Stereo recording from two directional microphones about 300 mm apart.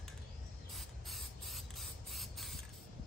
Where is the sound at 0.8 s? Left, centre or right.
Centre.